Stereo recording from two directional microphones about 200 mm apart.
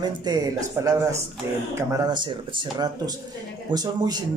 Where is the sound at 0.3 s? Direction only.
20° right (ahead or behind).